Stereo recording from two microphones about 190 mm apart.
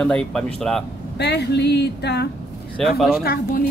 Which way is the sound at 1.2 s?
60° left (ahead or behind).